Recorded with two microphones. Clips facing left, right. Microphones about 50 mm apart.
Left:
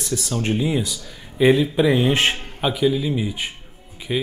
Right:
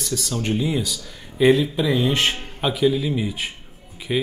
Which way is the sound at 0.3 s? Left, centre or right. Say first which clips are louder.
Left 1 dB; centre.